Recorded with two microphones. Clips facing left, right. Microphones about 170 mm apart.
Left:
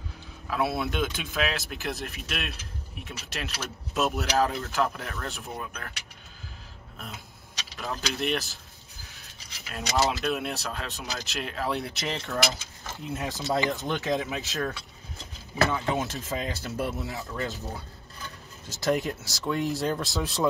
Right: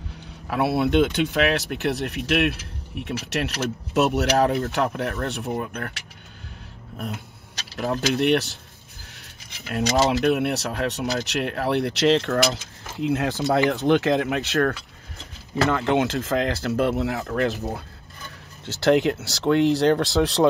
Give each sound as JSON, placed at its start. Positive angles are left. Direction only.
{"t": 0.5, "sound": "speech", "side_deg": -65}
{"t": 7.7, "sound": "speech", "side_deg": -65}
{"t": 9.1, "sound": "keys jangling", "side_deg": -60}
{"t": 10.2, "sound": "speech", "side_deg": -65}
{"t": 15.9, "sound": "speech", "side_deg": -85}
{"t": 18.7, "sound": "speech", "side_deg": -75}